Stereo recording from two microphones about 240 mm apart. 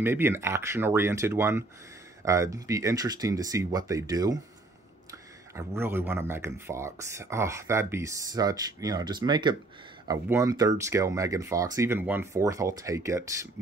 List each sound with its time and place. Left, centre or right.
0.0 s speech: centre
5.6 s speech: centre